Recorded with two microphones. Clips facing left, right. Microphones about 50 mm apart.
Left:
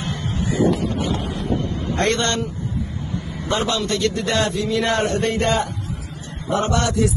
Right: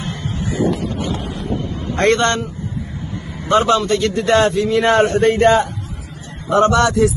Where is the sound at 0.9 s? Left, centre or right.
Centre.